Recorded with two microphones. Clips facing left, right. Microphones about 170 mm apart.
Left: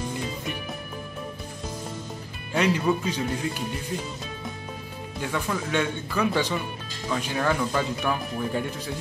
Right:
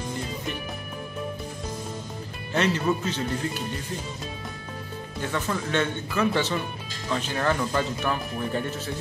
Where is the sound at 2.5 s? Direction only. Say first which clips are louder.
Left 1 dB; 10° left (ahead or behind).